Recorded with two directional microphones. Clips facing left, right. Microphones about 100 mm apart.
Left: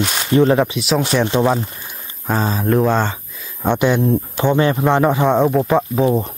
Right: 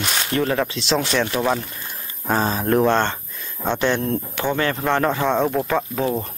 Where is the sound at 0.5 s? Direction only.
15° left (ahead or behind).